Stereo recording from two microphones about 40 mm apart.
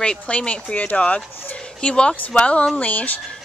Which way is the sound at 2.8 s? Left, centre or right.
Left.